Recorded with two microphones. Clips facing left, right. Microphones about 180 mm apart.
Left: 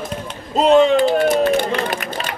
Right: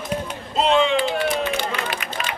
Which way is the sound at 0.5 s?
40° left (ahead or behind).